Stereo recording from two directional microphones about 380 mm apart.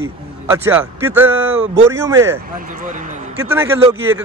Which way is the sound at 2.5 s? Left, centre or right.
Right.